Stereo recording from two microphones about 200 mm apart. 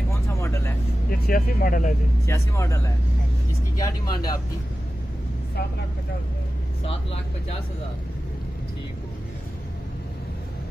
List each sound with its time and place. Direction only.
0.4 s vehicle: 15° left (ahead or behind)
1.1 s speech: 45° left (ahead or behind)
2.2 s speech: 15° left (ahead or behind)
6.9 s speech: 30° left (ahead or behind)